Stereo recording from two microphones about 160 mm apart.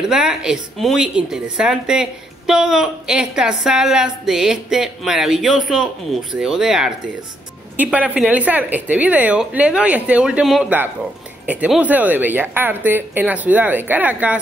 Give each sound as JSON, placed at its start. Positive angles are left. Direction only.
{"t": 0.0, "sound": "speech", "side_deg": -5}